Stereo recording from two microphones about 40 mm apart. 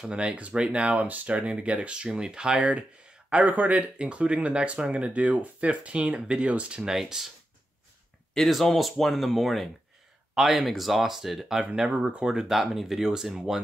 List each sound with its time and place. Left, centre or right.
0.1 s speech: right
3.3 s speech: right
6.8 s speech: centre
8.5 s speech: centre